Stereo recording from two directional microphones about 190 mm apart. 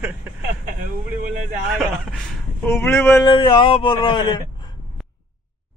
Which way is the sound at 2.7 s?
10° left (ahead or behind).